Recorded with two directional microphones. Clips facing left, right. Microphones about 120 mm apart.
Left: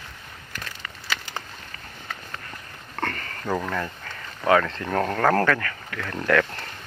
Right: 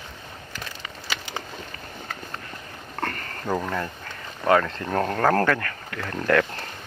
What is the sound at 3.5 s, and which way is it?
Speech, 10° right (ahead or behind).